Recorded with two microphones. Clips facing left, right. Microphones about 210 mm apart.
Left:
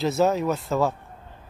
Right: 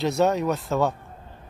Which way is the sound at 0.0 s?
Centre (ahead or behind).